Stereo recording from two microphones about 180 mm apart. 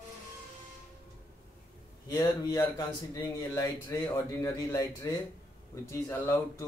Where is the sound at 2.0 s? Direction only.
20° left (ahead or behind).